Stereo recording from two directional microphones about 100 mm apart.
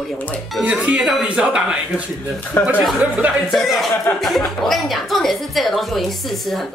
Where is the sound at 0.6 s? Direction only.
15° right (ahead or behind).